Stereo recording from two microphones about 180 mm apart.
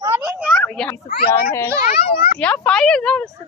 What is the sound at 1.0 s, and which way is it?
Speech, 60° left (ahead or behind).